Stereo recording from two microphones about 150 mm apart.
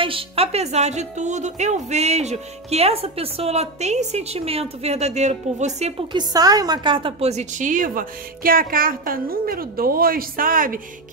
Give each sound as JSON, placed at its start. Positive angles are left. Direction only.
{"t": 0.0, "sound": "a woman's voice", "side_deg": -40}
{"t": 6.1, "sound": "a woman's voice", "side_deg": -25}